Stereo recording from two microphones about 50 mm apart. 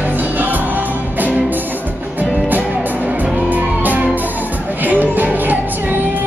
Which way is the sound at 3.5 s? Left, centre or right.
Right.